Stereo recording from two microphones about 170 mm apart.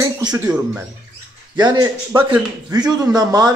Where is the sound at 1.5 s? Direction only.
25° right (ahead or behind).